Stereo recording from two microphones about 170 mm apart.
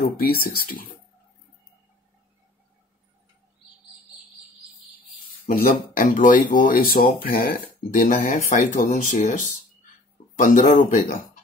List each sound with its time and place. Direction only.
0.2 s speech: 60° left (ahead or behind)
5.9 s speech: 50° left (ahead or behind)